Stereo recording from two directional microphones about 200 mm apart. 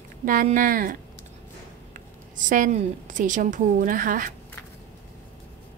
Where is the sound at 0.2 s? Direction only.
45° right (ahead or behind).